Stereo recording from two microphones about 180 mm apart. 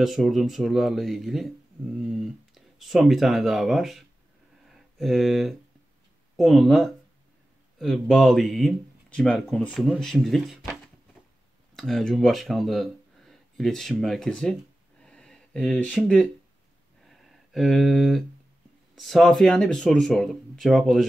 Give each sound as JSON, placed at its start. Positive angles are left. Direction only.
{"t": 0.0, "sound": "speech", "side_deg": 0}
{"t": 15.0, "sound": "a sound", "side_deg": 5}
{"t": 18.9, "sound": "speech", "side_deg": 0}